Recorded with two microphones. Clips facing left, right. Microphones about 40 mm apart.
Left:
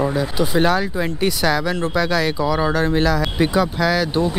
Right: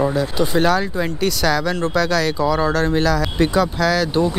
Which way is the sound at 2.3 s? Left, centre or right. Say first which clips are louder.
Right 1 dB; centre.